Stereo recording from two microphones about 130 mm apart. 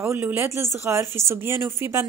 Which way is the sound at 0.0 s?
15° right (ahead or behind).